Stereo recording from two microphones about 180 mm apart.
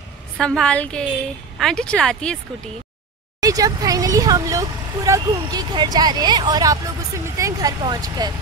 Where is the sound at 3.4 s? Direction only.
20° right (ahead or behind).